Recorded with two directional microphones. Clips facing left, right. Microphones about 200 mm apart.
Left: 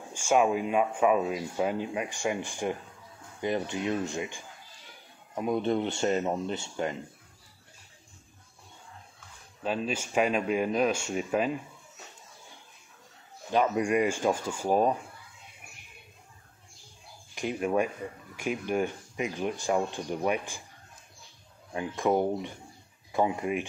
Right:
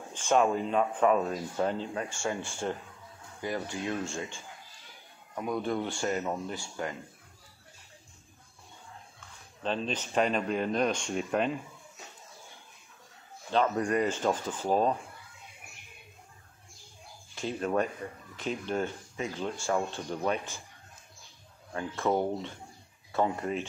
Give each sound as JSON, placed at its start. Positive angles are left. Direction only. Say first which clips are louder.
{"t": 0.1, "sound": "speech", "louder": "left 1 dB", "side_deg": 10}
{"t": 9.6, "sound": "speech", "louder": "left 1 dB", "side_deg": 10}
{"t": 13.5, "sound": "speech", "louder": "left 2 dB", "side_deg": 10}
{"t": 17.4, "sound": "speech", "louder": "left 2 dB", "side_deg": 15}
{"t": 21.7, "sound": "speech", "louder": "left 2 dB", "side_deg": 15}